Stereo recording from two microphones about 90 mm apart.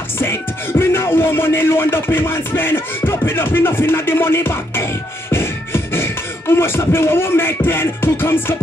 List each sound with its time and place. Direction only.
0.2 s speech: 25° left (ahead or behind)
5.3 s beatboxing: 25° left (ahead or behind)